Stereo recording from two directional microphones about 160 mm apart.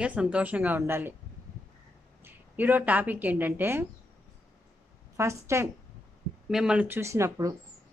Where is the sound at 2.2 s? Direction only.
10° right (ahead or behind).